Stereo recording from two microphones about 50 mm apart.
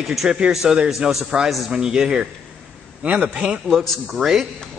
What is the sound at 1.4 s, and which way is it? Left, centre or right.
Speech, centre.